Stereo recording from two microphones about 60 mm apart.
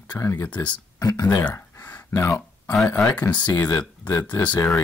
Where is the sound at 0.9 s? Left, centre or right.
Left.